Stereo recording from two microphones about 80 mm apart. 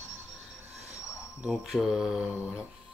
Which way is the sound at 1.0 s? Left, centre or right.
Left.